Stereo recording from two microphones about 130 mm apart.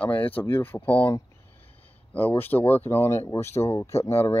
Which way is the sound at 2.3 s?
15° left (ahead or behind).